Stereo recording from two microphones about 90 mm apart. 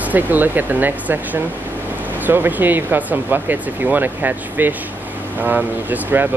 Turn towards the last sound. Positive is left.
turn(degrees=-20)  # may be behind; listen again after turning